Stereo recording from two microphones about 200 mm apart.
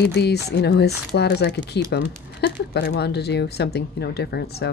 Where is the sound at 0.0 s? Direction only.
55° left (ahead or behind).